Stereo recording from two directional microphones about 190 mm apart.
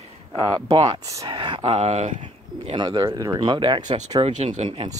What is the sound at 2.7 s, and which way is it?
Speech, 20° right (ahead or behind).